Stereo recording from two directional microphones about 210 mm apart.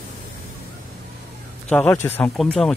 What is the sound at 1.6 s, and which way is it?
Speech, 5° left (ahead or behind).